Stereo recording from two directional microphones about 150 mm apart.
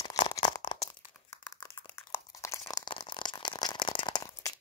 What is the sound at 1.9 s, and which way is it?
Crunch, 20° left (ahead or behind).